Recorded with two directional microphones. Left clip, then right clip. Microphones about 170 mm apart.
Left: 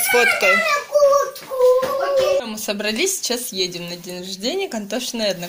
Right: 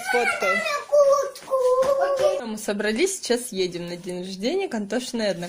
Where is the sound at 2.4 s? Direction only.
35° right (ahead or behind).